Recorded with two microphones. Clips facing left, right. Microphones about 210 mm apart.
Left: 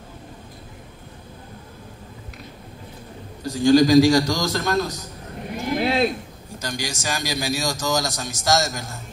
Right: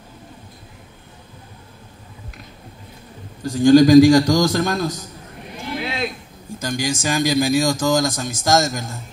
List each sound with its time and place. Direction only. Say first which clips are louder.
3.4 s a man's voice: right 4 dB; 50° right (ahead or behind)
5.8 s a sound: left 6 dB; 35° left (ahead or behind)
6.6 s a man's voice: right 6 dB; 50° right (ahead or behind)